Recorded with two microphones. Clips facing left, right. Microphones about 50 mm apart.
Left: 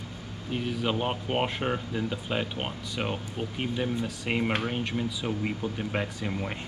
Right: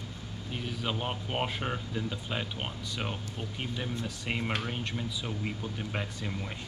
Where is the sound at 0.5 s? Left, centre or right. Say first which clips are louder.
Left 6 dB; centre.